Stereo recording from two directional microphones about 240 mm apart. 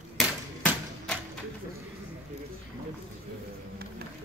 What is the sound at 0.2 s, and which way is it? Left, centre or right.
Typewriter, centre.